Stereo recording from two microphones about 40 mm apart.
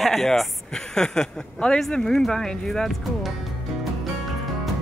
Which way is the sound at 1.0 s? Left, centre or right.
Centre.